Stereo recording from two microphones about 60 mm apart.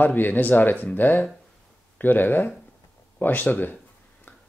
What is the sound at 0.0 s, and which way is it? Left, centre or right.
Speech, left.